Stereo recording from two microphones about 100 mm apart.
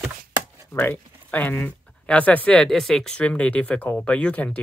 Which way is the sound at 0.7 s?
20° left (ahead or behind).